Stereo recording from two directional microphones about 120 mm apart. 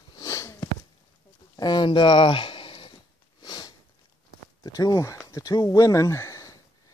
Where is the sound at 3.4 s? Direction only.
35° left (ahead or behind).